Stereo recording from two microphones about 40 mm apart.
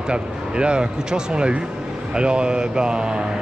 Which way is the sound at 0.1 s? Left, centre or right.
Right.